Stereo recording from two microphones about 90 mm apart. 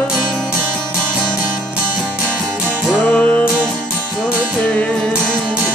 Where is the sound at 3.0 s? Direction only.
15° left (ahead or behind).